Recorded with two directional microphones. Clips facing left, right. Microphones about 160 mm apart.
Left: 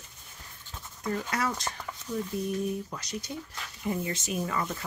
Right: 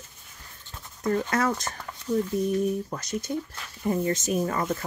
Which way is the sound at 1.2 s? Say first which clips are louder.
Right 5 dB; 50° right (ahead or behind).